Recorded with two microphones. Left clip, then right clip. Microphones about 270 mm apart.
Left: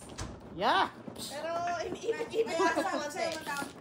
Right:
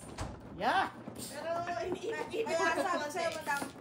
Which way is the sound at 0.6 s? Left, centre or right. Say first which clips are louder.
Left 3 dB; left.